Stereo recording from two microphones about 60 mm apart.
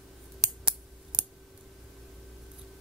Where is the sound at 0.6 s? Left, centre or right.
Centre.